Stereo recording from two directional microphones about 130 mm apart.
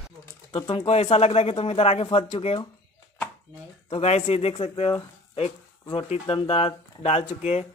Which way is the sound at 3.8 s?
55° left (ahead or behind).